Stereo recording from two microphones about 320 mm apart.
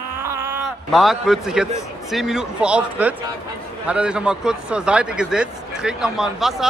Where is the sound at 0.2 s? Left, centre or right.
Centre.